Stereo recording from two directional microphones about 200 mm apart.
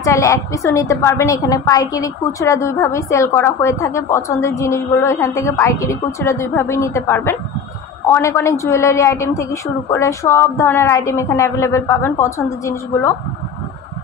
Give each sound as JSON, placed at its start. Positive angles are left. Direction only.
{"t": 0.0, "sound": "a woman's voice", "side_deg": 15}